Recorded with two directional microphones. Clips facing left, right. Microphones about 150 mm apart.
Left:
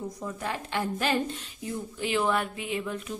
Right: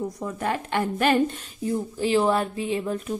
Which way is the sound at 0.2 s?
55° right (ahead or behind).